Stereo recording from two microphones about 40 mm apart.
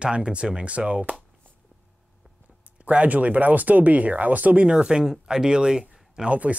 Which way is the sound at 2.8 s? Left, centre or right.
Right.